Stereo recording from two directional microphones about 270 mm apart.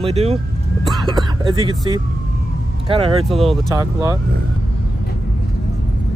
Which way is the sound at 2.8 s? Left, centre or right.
Right.